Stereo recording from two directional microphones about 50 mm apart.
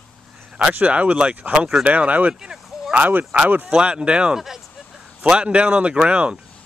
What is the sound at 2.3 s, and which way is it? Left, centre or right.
Speech, centre.